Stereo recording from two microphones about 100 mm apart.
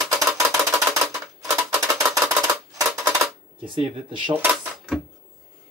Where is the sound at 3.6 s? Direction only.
55° right (ahead or behind).